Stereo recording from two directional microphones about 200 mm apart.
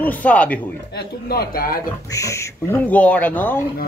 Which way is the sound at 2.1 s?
15° left (ahead or behind).